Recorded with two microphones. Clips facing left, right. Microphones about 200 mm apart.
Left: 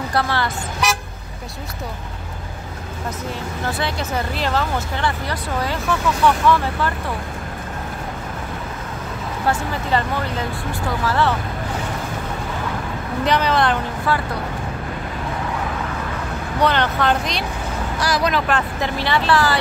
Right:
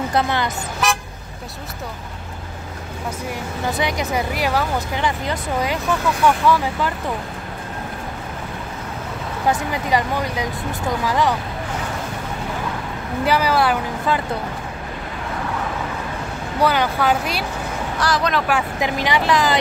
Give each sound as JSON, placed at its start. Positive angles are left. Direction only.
{"t": 0.1, "sound": "speech", "side_deg": -20}
{"t": 3.6, "sound": "speech", "side_deg": -15}
{"t": 9.5, "sound": "speech", "side_deg": -15}
{"t": 13.2, "sound": "speech", "side_deg": -5}
{"t": 16.6, "sound": "speech", "side_deg": -10}
{"t": 18.0, "sound": "speech", "side_deg": 10}
{"t": 18.5, "sound": "speech", "side_deg": -15}